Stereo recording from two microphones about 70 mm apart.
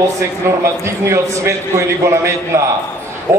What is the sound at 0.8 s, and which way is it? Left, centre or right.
A man's voice, right.